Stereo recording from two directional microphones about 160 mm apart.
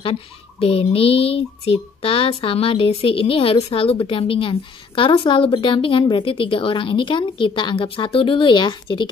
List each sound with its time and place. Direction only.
0.0 s speech: 40° left (ahead or behind)